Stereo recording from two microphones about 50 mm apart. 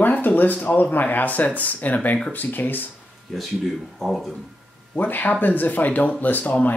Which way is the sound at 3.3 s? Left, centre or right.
Centre.